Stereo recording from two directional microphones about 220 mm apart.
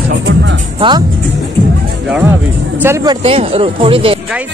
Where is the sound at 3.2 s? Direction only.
25° right (ahead or behind).